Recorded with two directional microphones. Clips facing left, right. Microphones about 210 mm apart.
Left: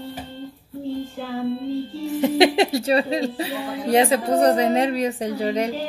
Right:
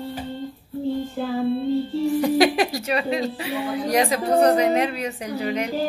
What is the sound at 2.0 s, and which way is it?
Speech, 20° left (ahead or behind).